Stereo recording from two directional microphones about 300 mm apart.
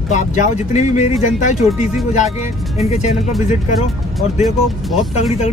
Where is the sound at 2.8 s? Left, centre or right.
Left.